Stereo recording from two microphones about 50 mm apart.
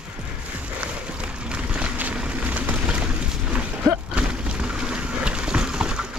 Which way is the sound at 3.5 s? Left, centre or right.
Right.